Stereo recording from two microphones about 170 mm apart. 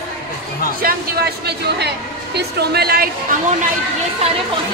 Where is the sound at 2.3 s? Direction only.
70° right (ahead or behind).